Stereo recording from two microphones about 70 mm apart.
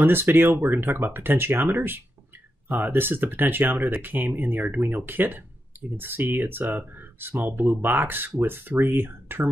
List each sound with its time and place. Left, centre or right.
0.0 s speech: right